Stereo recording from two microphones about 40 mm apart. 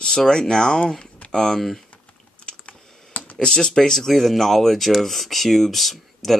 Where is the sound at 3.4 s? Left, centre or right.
Centre.